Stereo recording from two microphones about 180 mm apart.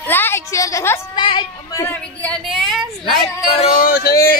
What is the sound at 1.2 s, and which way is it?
Speech, 25° left (ahead or behind).